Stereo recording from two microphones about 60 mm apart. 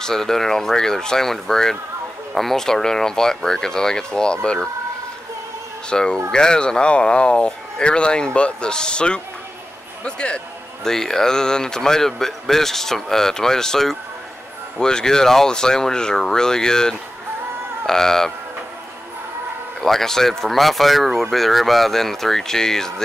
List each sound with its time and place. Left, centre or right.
0.0 s a man's voice: centre
5.9 s a man's voice: centre
19.8 s speech: centre